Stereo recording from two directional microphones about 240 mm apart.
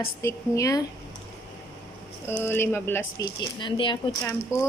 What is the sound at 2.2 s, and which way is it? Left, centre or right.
A woman's voice, centre.